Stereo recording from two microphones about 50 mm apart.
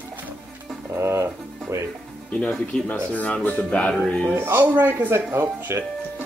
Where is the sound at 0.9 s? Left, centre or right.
Right.